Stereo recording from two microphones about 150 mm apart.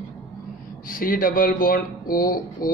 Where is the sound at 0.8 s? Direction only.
70° left (ahead or behind).